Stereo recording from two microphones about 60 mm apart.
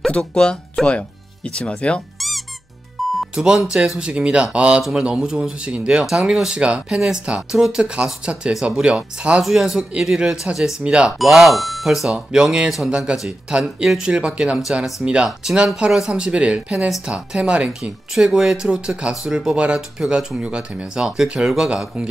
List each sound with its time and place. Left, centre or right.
0.2 s speech: centre
2.1 s music: centre
3.2 s speech: centre
7.8 s speech: centre
11.1 s speech: centre
18.1 s speech: centre